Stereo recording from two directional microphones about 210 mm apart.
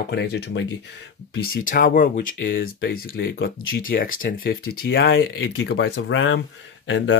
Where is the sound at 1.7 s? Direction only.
40° left (ahead or behind); by 7.2 s 60° left (ahead or behind).